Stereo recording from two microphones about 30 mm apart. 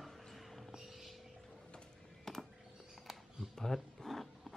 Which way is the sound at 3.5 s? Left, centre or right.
Centre.